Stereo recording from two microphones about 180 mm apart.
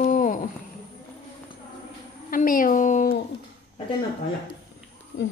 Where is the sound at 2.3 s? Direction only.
50° left (ahead or behind).